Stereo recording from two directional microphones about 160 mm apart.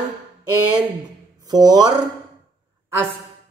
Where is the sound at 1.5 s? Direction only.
25° right (ahead or behind).